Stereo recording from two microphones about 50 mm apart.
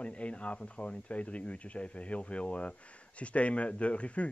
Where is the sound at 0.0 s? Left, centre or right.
Left.